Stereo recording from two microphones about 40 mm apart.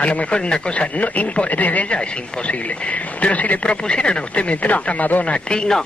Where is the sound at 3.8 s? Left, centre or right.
Left.